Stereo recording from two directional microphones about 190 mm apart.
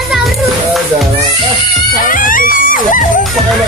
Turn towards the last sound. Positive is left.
turn(degrees=45)  # may be behind; listen again after turning